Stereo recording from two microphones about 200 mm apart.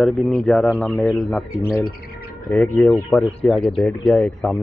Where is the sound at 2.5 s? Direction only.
5° left (ahead or behind).